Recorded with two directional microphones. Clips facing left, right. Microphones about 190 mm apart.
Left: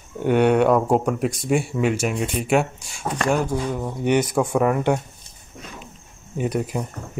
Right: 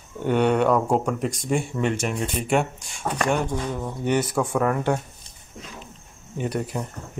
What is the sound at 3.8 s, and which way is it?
Speech, 15° left (ahead or behind).